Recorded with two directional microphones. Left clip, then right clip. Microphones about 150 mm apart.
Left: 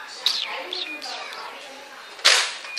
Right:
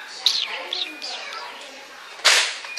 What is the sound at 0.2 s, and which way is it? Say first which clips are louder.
Bird: right 3 dB; centre (ahead or behind).